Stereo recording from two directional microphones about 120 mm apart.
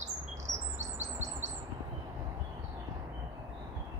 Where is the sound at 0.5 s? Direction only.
30° right (ahead or behind).